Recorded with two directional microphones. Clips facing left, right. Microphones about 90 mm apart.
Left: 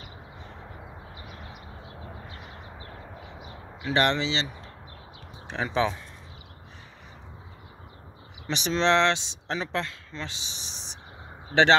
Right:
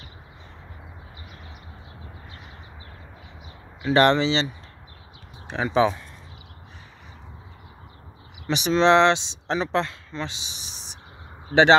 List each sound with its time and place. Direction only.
3.8 s speech: 40° right (ahead or behind)
5.5 s speech: 10° right (ahead or behind)
8.5 s speech: 10° right (ahead or behind)